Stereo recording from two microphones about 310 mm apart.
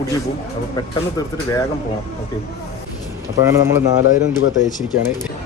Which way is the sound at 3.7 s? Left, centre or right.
Left.